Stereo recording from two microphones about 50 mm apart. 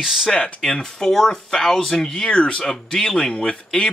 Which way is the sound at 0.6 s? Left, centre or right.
Centre.